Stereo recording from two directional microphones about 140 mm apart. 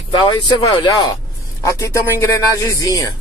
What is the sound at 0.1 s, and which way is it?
Speech, 35° left (ahead or behind).